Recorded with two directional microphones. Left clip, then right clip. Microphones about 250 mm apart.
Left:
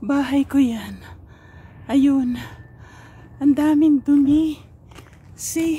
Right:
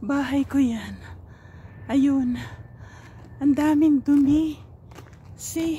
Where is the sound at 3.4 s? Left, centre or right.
Centre.